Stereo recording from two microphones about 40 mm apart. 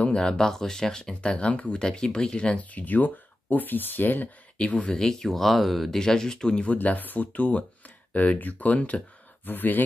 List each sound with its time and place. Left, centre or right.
0.0 s speech: left
1.2 s speech: left
2.8 s speech: left
4.6 s speech: left
4.9 s speech: centre
5.9 s speech: centre
6.6 s speech: left
9.5 s speech: left